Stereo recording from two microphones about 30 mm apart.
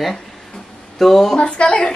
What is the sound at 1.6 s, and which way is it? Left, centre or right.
Speech, left.